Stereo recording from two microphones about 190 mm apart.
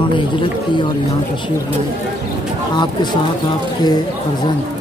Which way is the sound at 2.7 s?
25° left (ahead or behind).